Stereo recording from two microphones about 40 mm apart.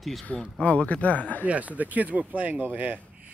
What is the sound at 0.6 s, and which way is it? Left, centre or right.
Speech, left.